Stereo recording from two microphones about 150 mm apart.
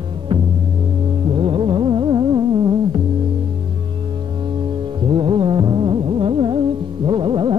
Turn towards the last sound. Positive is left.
turn(degrees=-35)  # may be behind; listen again after turning